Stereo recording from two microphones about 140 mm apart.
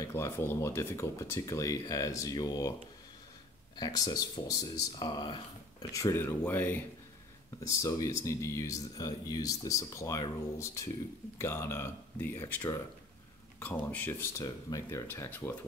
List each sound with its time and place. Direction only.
0.0 s speech: 20° left (ahead or behind)
3.7 s speech: 30° left (ahead or behind)
13.8 s speech: 15° left (ahead or behind)